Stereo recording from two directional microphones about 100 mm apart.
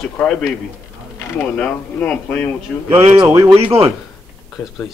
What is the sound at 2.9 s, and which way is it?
Speech, 55° right (ahead or behind).